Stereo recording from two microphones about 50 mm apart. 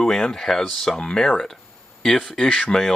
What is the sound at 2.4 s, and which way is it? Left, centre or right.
Speech, left.